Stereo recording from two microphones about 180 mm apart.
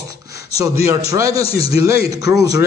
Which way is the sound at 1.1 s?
20° right (ahead or behind).